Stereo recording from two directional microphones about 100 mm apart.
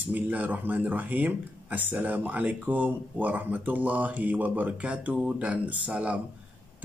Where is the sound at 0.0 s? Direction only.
15° right (ahead or behind).